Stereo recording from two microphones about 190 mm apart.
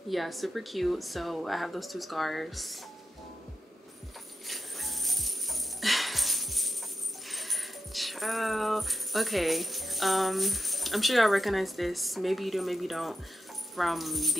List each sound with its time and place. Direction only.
0.1 s speech: centre (ahead or behind)
4.5 s music: centre (ahead or behind)
7.2 s speech: centre (ahead or behind)